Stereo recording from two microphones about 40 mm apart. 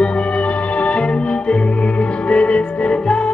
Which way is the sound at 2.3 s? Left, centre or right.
Left.